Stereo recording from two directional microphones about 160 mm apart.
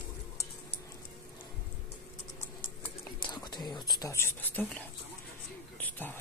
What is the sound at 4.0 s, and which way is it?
Speech, 15° left (ahead or behind).